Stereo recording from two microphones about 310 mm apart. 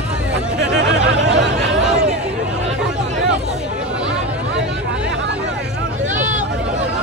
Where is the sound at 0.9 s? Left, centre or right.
Right.